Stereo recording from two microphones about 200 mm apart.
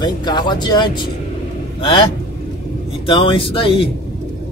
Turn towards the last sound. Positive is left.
turn(degrees=25)  # may be behind; listen again after turning